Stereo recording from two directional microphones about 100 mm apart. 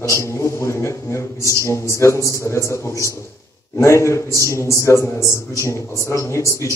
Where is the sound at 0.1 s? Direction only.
30° left (ahead or behind).